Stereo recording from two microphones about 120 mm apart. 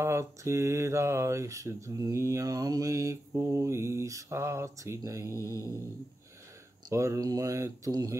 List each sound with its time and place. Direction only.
0.0 s mantra: 25° right (ahead or behind)
5.3 s mantra: 25° left (ahead or behind)
6.9 s mantra: 25° right (ahead or behind)